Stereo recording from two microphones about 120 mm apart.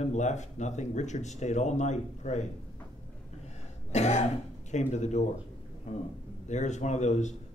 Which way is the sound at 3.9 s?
70° left (ahead or behind).